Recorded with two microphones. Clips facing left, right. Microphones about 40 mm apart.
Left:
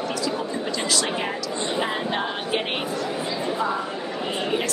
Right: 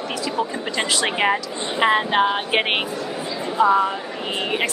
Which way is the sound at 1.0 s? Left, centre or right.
Right.